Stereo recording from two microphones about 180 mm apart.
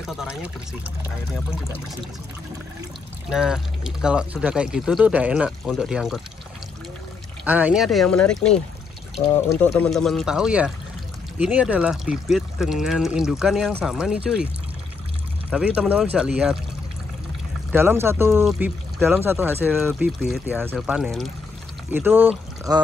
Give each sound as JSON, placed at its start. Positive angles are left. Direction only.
{"t": 0.0, "sound": "pour", "side_deg": 0}
{"t": 3.3, "sound": "speech", "side_deg": -5}
{"t": 7.4, "sound": "speech", "side_deg": -10}
{"t": 15.5, "sound": "speech", "side_deg": -5}
{"t": 17.6, "sound": "speech", "side_deg": -10}
{"t": 18.4, "sound": "speech", "side_deg": 0}
{"t": 19.0, "sound": "speech", "side_deg": -10}
{"t": 21.9, "sound": "speech", "side_deg": -10}